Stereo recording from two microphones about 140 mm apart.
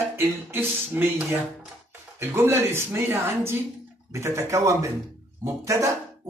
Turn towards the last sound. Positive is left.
turn(degrees=-20)  # may be behind; listen again after turning